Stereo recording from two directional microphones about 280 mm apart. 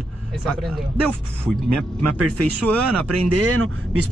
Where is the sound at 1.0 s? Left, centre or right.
Right.